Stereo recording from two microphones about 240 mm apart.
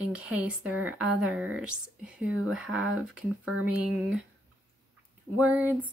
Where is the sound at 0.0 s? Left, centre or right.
Centre.